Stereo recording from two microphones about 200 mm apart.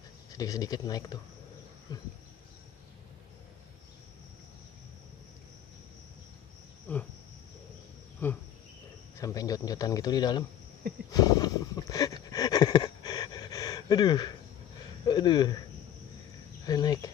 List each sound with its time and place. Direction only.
0.3 s a man's voice: 20° left (ahead or behind)
6.9 s cricket: 10° left (ahead or behind)
8.2 s cricket: 10° left (ahead or behind)
9.2 s a man's voice: 20° left (ahead or behind)
11.1 s a sound: 20° left (ahead or behind)
15.0 s a man's voice: 20° left (ahead or behind)
16.6 s a man's voice: 20° left (ahead or behind)